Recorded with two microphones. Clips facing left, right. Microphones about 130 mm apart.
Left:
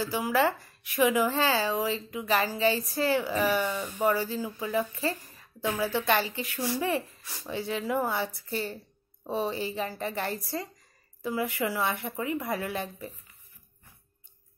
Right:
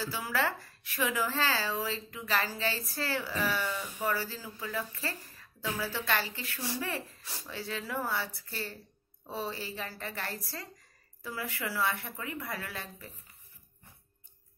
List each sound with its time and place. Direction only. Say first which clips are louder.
0.0 s a woman's voice: left 7 dB; 15° left (ahead or behind)